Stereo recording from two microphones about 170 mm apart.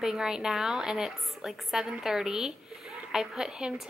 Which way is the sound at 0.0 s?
5° right (ahead or behind).